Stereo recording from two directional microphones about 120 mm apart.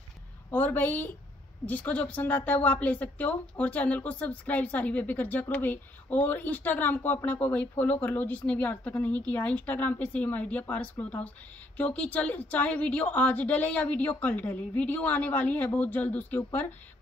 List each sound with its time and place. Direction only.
0.5 s a woman's voice: 15° left (ahead or behind)